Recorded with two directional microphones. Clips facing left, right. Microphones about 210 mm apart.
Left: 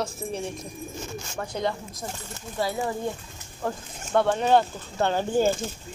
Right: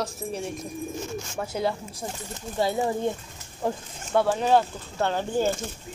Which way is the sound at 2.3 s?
25° right (ahead or behind).